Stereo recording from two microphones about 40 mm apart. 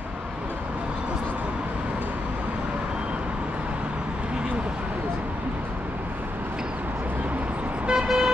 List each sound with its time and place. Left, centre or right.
7.8 s vehicle: right